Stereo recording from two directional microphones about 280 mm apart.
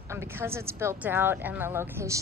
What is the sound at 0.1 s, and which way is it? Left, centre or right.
Speech, centre.